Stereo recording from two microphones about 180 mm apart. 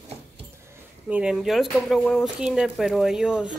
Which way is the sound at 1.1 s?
5° right (ahead or behind).